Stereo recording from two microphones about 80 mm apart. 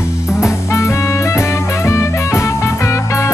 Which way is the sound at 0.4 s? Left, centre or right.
Left.